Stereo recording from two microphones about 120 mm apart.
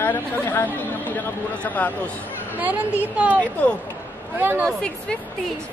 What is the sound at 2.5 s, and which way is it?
Speech, 15° right (ahead or behind).